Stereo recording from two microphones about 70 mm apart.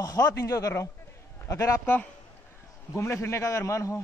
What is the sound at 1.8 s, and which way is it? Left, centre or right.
Speech, left.